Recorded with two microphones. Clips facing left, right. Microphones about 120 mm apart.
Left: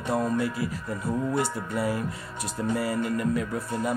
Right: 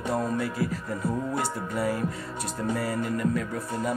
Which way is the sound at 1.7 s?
5° left (ahead or behind).